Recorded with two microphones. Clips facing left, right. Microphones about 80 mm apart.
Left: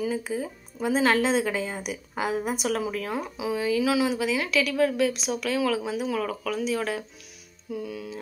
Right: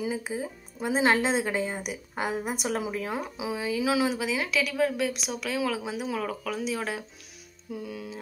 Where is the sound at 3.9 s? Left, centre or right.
Right.